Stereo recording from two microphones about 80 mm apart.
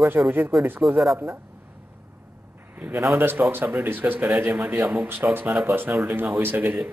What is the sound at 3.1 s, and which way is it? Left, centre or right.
A man's voice, right.